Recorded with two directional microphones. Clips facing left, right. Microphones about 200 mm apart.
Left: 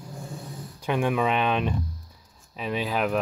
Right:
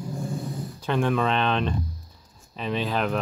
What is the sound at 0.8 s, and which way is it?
Speech, 10° left (ahead or behind).